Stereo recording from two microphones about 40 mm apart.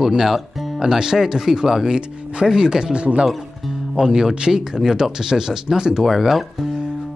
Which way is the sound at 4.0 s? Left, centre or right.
Centre.